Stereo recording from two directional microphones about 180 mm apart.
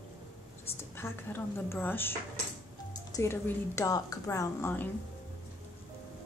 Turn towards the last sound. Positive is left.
turn(degrees=10)  # may be behind; listen again after turning